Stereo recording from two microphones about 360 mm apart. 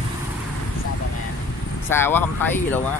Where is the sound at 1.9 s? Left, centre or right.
Centre.